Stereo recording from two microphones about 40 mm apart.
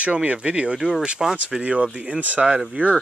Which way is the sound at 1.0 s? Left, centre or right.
Centre.